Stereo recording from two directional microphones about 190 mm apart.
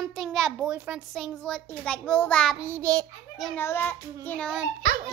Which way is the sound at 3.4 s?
10° left (ahead or behind).